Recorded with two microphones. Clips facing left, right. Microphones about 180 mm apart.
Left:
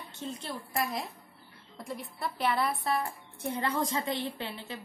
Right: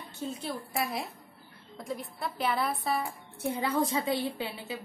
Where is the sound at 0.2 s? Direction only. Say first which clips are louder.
Right 3 dB; 5° right (ahead or behind).